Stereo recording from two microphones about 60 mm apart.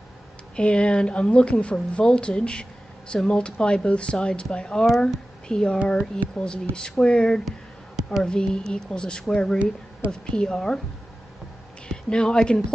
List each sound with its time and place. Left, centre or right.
0.6 s speech: centre
7.4 s a sound: centre
8.2 s speech: centre
11.9 s speech: centre